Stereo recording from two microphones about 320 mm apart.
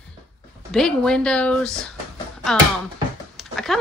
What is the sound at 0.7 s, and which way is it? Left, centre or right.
Speech, centre.